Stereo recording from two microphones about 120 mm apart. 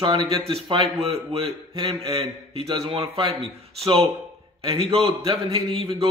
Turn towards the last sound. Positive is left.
turn(degrees=-50)  # may be behind; listen again after turning